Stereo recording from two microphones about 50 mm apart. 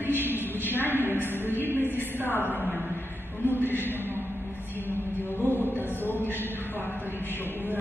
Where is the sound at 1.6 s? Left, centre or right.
Right.